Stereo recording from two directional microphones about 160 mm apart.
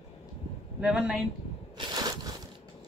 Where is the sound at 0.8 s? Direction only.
5° right (ahead or behind).